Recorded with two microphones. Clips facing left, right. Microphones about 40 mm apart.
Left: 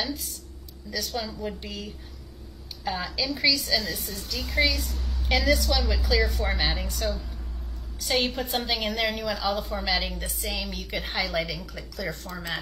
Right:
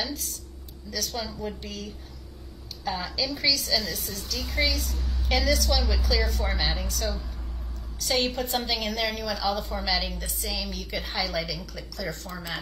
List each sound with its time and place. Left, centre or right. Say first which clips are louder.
1.0 s a woman's voice: even; centre; by 4.4 s left
4.4 s a woman's voice: left 3 dB; centre
5.2 s a woman's voice: left 2 dB; left